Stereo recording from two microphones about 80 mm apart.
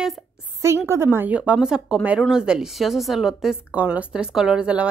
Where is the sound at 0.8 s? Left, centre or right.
Right.